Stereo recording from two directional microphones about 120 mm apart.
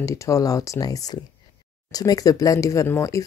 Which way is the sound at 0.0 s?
25° left (ahead or behind).